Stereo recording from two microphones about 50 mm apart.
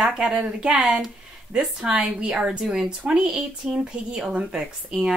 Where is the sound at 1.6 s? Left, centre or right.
Centre.